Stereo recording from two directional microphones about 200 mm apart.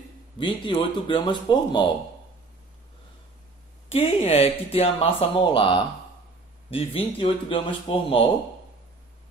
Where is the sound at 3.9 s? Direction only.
30° left (ahead or behind).